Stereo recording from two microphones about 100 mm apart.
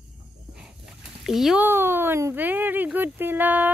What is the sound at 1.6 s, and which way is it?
Speech, 20° right (ahead or behind).